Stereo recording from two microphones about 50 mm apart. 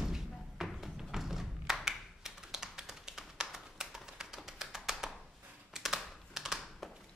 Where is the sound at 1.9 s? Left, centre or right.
Centre.